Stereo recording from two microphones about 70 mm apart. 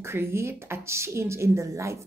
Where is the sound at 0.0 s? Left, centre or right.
Right.